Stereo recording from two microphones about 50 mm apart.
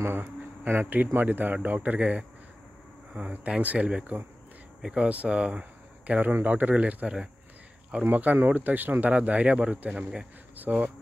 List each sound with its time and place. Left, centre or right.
0.7 s speech: right
10.5 s speech: right